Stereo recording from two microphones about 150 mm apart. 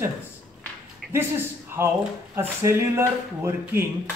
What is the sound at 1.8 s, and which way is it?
Speech, 15° right (ahead or behind).